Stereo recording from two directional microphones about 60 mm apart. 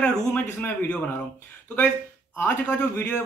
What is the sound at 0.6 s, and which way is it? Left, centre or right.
Speech, left.